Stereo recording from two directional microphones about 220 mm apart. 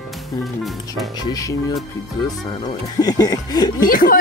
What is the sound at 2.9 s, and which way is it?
Chuckle, 15° left (ahead or behind).